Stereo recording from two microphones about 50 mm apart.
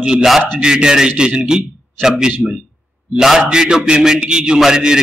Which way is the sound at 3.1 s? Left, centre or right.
Centre.